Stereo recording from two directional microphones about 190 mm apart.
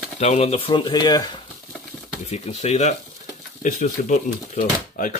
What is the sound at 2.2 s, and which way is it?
Speech, 35° left (ahead or behind).